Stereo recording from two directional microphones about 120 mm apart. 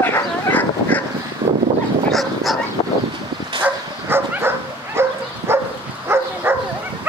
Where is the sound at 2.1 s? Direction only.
Centre (ahead or behind).